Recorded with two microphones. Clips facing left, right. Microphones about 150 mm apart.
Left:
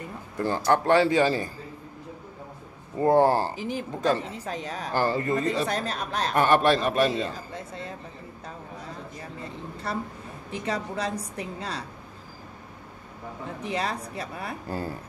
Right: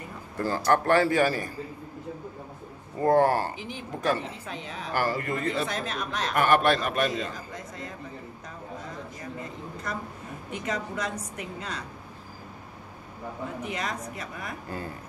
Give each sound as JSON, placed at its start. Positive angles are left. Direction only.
{"t": 0.4, "sound": "a man's voice", "side_deg": 20}
{"t": 3.0, "sound": "a man's voice", "side_deg": 25}
{"t": 5.0, "sound": "a man's voice", "side_deg": 30}
{"t": 9.9, "sound": "speech", "side_deg": 30}
{"t": 13.6, "sound": "speech", "side_deg": 30}